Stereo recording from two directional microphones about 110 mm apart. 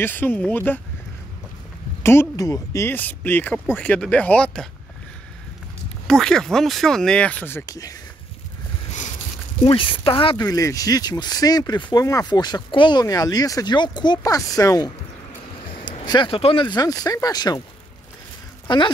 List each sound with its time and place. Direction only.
0.0 s speech: 15° left (ahead or behind)
2.3 s speech: 30° left (ahead or behind)
2.9 s speech: 15° left (ahead or behind)
6.0 s speech: 5° left (ahead or behind)
7.6 s speech: 35° left (ahead or behind)
9.7 s speech: 50° left (ahead or behind)
10.4 s speech: 30° left (ahead or behind)
12.3 s speech: 40° left (ahead or behind)
16.1 s speech: 50° left (ahead or behind)
16.6 s speech: 35° left (ahead or behind)
18.7 s speech: 45° left (ahead or behind)